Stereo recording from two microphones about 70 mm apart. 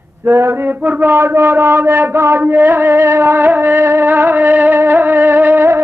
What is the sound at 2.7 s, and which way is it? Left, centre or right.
Music, right.